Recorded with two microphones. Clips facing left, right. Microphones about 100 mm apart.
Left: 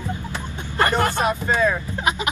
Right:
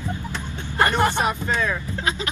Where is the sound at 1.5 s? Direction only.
10° left (ahead or behind).